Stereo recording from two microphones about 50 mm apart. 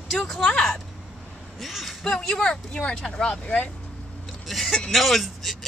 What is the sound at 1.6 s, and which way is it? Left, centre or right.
Speech, centre.